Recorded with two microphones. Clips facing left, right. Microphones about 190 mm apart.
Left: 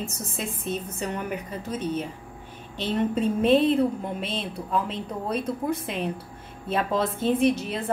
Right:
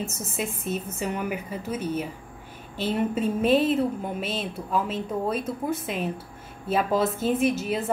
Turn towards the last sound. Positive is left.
turn(degrees=-5)  # may be behind; listen again after turning